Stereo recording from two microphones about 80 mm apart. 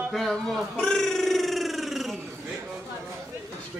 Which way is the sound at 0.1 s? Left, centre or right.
Centre.